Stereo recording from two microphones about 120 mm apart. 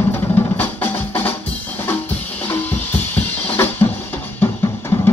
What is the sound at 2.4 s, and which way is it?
Music, 15° left (ahead or behind).